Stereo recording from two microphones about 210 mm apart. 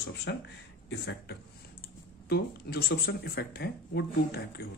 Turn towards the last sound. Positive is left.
turn(degrees=50)  # may be behind; listen again after turning